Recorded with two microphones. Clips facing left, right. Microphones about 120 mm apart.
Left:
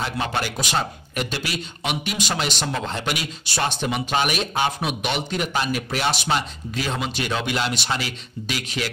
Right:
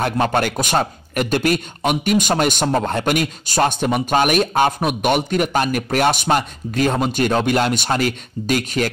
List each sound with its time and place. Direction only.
0.0 s speech: 50° right (ahead or behind)